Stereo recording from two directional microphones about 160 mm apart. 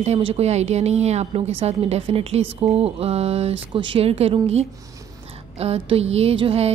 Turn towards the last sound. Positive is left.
turn(degrees=-35)  # may be behind; listen again after turning